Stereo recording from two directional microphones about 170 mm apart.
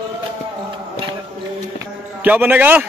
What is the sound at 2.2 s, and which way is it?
Speech, 10° right (ahead or behind).